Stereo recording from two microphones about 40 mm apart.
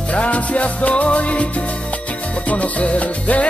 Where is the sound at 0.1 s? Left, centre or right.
Left.